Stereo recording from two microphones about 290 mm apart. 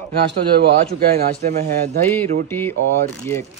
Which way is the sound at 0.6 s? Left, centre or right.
Right.